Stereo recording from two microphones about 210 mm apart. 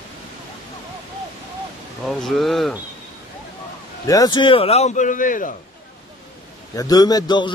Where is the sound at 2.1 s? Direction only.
Centre (ahead or behind).